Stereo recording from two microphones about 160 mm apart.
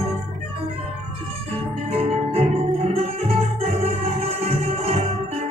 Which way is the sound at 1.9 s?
40° right (ahead or behind).